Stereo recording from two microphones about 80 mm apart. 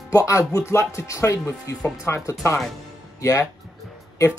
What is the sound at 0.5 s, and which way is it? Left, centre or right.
Speech, left.